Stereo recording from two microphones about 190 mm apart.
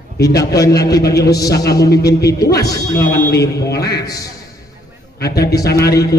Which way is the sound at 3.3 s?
60° left (ahead or behind).